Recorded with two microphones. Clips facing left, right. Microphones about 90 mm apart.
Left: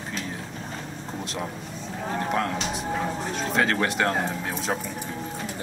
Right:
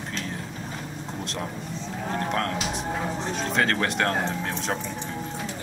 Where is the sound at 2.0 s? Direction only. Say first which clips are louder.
Left 1 dB; 5° left (ahead or behind).